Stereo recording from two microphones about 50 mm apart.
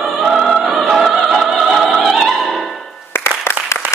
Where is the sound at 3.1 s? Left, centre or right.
Left.